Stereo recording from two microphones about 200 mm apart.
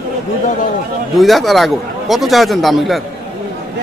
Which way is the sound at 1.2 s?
Centre (ahead or behind).